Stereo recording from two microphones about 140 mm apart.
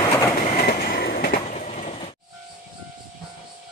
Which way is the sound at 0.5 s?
90° left.